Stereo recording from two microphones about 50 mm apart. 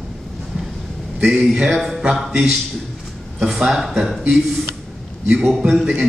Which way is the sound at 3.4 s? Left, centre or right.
Centre.